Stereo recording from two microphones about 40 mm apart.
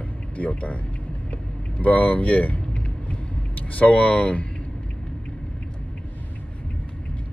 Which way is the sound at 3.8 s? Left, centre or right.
Left.